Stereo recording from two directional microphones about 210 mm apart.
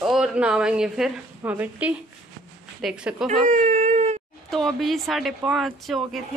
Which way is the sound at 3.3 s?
35° right (ahead or behind).